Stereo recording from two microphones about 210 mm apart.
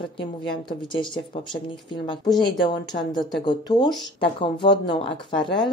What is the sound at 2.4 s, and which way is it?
Speech, 20° left (ahead or behind).